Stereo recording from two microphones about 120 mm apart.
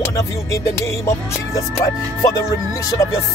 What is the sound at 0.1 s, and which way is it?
Speech, 25° left (ahead or behind).